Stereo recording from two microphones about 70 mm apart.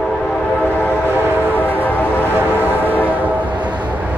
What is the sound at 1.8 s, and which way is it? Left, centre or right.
Train, left.